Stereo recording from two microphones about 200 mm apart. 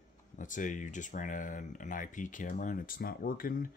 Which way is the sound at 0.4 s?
40° left (ahead or behind).